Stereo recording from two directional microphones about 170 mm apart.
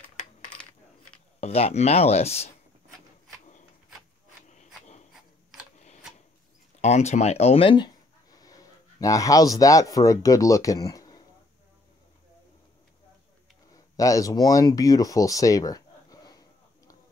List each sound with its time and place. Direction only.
0.5 s coin: 5° left (ahead or behind)
1.4 s speech: 40° left (ahead or behind)
4.5 s dog: 45° left (ahead or behind)
6.8 s speech: 40° left (ahead or behind); by 11.2 s 20° left (ahead or behind)
13.7 s a sound: 20° left (ahead or behind)